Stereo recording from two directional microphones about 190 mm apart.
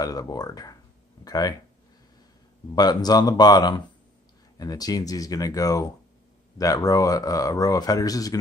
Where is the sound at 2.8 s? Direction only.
20° left (ahead or behind).